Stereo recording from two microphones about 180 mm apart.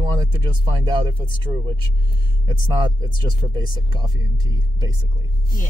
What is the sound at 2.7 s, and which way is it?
Speech, 25° right (ahead or behind).